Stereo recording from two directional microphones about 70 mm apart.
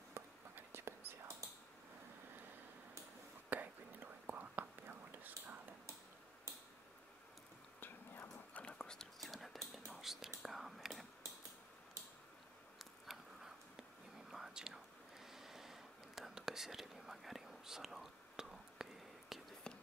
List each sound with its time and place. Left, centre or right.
0.2 s whispering: right
3.4 s whispering: right
7.8 s whispering: left
8.5 s whispering: centre
13.0 s whispering: centre
19.7 s a sound: centre